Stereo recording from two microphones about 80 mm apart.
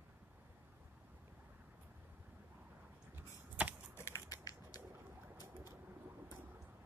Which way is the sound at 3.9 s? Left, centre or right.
Left.